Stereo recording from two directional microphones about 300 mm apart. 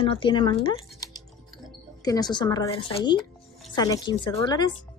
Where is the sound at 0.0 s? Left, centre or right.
Centre.